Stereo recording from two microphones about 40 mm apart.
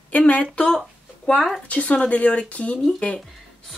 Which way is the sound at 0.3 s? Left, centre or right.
Left.